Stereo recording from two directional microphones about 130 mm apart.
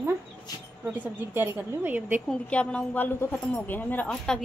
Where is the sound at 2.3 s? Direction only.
10° left (ahead or behind).